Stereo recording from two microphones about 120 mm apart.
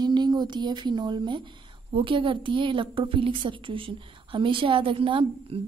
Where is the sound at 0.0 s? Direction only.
35° right (ahead or behind).